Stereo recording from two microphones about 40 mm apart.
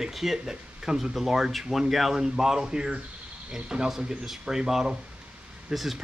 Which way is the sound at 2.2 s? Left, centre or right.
Centre.